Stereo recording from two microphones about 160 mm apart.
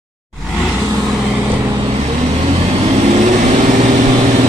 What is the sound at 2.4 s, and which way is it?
Vehicle, 40° right (ahead or behind).